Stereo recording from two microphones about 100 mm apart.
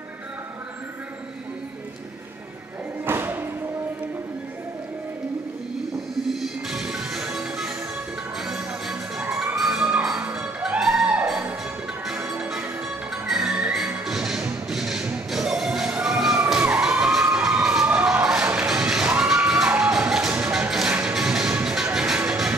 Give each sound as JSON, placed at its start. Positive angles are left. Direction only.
{"t": 3.1, "sound": "music", "side_deg": -20}
{"t": 6.4, "sound": "music", "side_deg": -5}
{"t": 8.4, "sound": "children shouting", "side_deg": -5}
{"t": 11.2, "sound": "music", "side_deg": -10}
{"t": 17.0, "sound": "a sound", "side_deg": -5}
{"t": 17.8, "sound": "music", "side_deg": -10}